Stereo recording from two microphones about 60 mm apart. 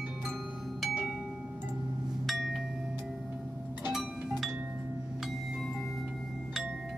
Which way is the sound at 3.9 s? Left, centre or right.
Centre.